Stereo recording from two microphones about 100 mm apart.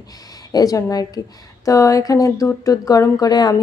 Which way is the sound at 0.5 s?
40° left (ahead or behind).